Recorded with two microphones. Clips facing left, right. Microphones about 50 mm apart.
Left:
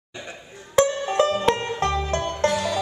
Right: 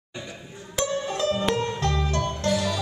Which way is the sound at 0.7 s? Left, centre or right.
Left.